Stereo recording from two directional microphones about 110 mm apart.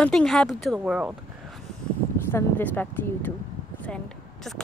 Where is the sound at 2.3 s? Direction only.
15° left (ahead or behind).